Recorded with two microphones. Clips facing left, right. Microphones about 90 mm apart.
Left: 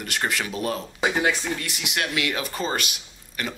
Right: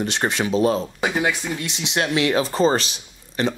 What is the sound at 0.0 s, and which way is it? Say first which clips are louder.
Speech: right 5 dB; 25° right (ahead or behind).